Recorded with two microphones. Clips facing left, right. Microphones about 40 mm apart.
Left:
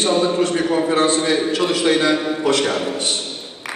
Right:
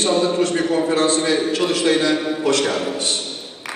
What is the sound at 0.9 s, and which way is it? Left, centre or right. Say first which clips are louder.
A man's voice: left 1 dB; left.